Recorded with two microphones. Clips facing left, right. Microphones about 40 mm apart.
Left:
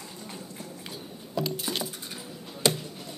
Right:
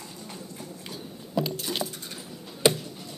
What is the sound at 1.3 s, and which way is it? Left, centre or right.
Keys jangling, centre.